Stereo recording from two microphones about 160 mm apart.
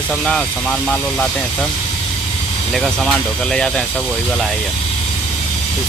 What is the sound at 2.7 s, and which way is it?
Speech, centre (ahead or behind).